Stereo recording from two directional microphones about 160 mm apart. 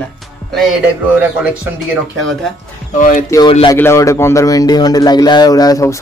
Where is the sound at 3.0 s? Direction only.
55° left (ahead or behind).